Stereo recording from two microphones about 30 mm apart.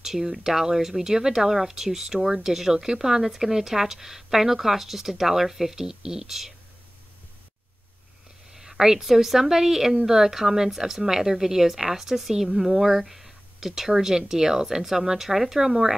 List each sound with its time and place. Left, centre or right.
0.0 s speech: centre
8.5 s a sound: centre
9.0 s speech: centre